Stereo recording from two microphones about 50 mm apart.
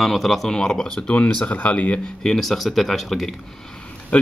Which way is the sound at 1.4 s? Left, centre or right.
Left.